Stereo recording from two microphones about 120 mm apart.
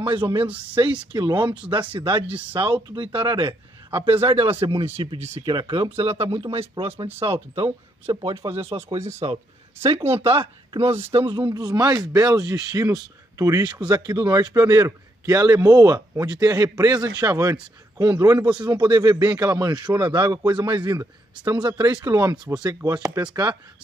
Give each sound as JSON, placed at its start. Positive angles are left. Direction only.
{"t": 0.0, "sound": "a man's voice", "side_deg": -40}
{"t": 0.5, "sound": "speech", "side_deg": -10}
{"t": 1.1, "sound": "a man's voice", "side_deg": -40}
{"t": 5.4, "sound": "a man's voice", "side_deg": -40}
{"t": 5.9, "sound": "a man's voice", "side_deg": -55}